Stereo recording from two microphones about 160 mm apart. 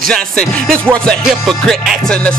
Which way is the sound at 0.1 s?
5° left (ahead or behind).